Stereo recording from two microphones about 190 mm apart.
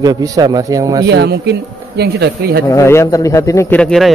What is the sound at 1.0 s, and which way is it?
Speech, 60° right (ahead or behind).